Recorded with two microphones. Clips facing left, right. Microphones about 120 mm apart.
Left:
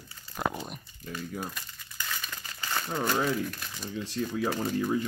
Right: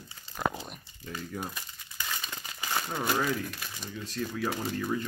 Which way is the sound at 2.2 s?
20° right (ahead or behind).